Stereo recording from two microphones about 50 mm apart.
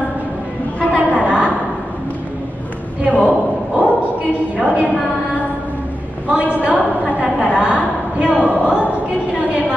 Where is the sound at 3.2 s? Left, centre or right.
Right.